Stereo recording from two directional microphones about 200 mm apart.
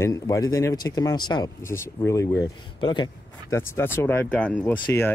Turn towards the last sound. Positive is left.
turn(degrees=10)  # may be behind; listen again after turning